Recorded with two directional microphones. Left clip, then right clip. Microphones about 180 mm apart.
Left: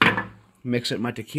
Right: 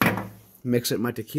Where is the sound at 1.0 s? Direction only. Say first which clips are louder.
Right 1 dB; 5° left (ahead or behind).